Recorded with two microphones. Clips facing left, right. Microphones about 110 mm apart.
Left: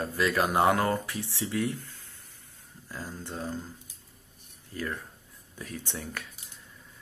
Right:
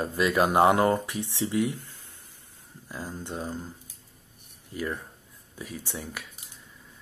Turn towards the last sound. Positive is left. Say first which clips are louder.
# right 1 dB
turn(degrees=-5)  # may be behind; listen again after turning